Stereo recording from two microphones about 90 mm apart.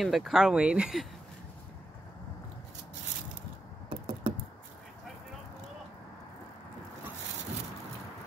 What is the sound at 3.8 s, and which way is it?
Computer keyboard, 70° right (ahead or behind).